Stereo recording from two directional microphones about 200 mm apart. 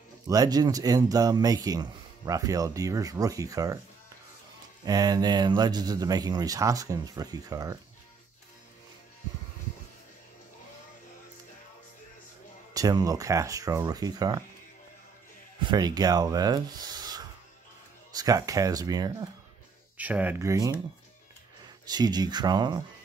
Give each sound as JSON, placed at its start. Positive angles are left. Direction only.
{"t": 0.3, "sound": "speech", "side_deg": -20}
{"t": 4.8, "sound": "speech", "side_deg": -20}
{"t": 12.7, "sound": "speech", "side_deg": -20}
{"t": 15.6, "sound": "speech", "side_deg": -20}
{"t": 20.0, "sound": "speech", "side_deg": -10}
{"t": 21.8, "sound": "speech", "side_deg": -20}